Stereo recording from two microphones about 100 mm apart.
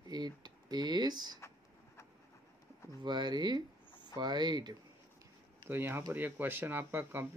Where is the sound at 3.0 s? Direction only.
45° right (ahead or behind).